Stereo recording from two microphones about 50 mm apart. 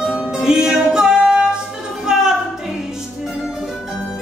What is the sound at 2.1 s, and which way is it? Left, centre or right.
A capella, centre.